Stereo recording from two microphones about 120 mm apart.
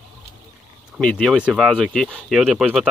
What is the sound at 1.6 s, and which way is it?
Speech, 5° left (ahead or behind).